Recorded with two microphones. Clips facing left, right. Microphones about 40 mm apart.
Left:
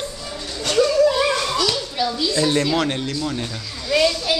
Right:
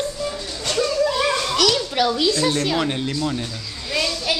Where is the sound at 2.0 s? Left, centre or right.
Right.